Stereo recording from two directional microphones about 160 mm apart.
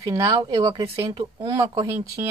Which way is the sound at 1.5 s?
20° right (ahead or behind).